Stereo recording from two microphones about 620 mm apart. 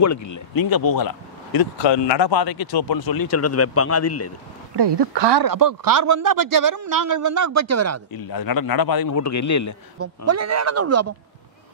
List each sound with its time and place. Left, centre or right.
0.0 s speech: left
4.7 s a man's voice: right
8.1 s speech: left
9.9 s speech: right